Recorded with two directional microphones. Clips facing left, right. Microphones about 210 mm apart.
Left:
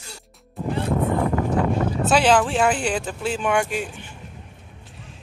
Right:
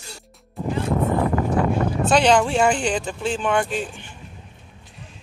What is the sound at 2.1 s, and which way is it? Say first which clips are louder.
Speech: right 1 dB; 5° left (ahead or behind).